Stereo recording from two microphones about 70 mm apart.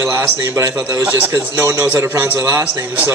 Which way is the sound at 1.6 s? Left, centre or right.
Right.